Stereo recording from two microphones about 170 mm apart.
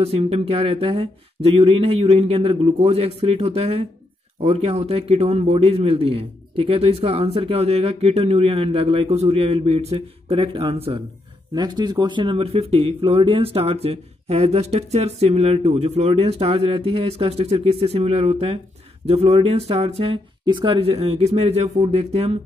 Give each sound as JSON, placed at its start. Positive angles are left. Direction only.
{"t": 0.0, "sound": "speech", "side_deg": -35}
{"t": 11.5, "sound": "speech", "side_deg": -25}